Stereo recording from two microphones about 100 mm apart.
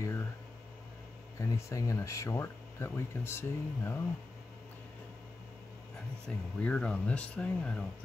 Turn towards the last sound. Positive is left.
turn(degrees=10)  # may be behind; listen again after turning